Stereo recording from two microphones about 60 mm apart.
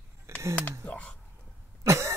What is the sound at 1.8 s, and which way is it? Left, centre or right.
Cough, right.